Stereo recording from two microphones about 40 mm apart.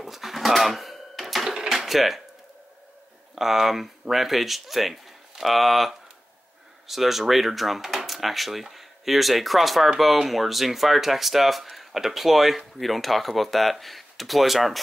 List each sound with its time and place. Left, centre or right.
0.0 s cash register: centre
1.7 s a sound: centre
3.3 s speech: centre